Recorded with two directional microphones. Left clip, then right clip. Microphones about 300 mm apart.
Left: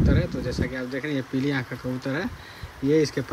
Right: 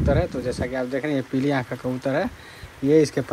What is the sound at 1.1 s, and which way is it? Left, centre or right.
Speech, centre.